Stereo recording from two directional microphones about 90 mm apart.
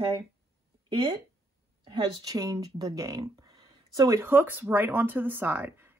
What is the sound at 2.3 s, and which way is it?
Speech, 40° right (ahead or behind).